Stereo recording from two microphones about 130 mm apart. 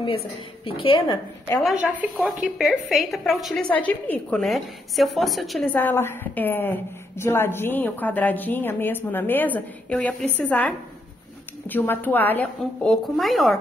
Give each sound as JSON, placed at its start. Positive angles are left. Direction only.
{"t": 0.7, "sound": "speech", "side_deg": 40}
{"t": 2.1, "sound": "a woman's voice", "side_deg": 0}
{"t": 5.7, "sound": "a woman's voice", "side_deg": 15}